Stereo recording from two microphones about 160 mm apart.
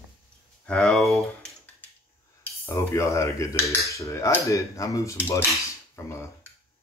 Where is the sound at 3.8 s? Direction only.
20° left (ahead or behind).